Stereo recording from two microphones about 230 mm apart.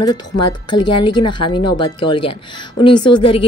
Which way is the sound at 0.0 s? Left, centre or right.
Centre.